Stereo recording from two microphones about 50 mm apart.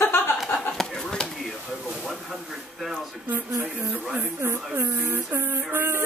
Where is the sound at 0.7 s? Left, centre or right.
Centre.